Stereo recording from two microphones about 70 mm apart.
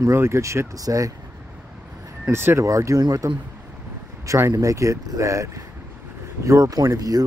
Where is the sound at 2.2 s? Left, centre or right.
Right.